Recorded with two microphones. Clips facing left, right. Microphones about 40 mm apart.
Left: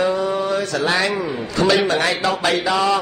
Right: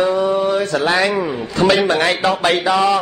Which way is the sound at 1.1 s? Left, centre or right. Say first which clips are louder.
Right 3 dB; right.